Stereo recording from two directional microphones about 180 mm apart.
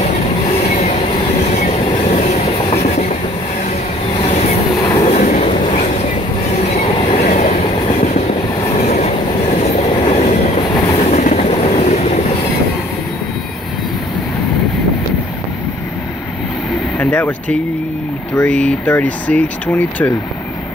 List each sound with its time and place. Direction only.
0.6 s train: 40° left (ahead or behind)
4.2 s train: 35° left (ahead or behind)
7.2 s train: 40° left (ahead or behind)
17.0 s a sound: 10° left (ahead or behind)
18.3 s speech: 10° left (ahead or behind)